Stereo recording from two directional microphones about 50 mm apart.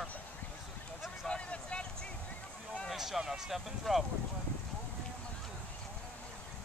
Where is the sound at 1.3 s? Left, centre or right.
Left.